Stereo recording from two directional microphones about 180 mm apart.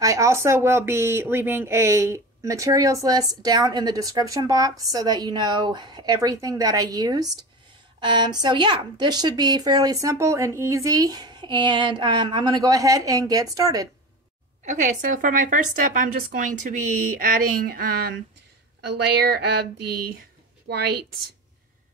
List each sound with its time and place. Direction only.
0.0 s speech: 15° right (ahead or behind)
14.6 s a woman's voice: 45° right (ahead or behind); by 19.6 s 65° right (ahead or behind)
20.6 s a woman's voice: 65° right (ahead or behind)